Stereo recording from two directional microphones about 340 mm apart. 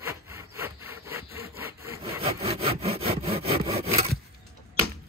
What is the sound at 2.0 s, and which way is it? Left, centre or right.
Sawing, centre.